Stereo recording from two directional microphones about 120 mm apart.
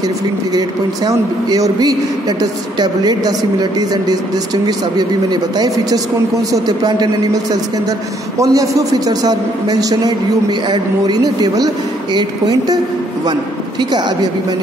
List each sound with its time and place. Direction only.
0.6 s a woman's voice: 30° right (ahead or behind)
4.6 s a woman's voice: 35° right (ahead or behind)
8.4 s a woman's voice: 30° right (ahead or behind)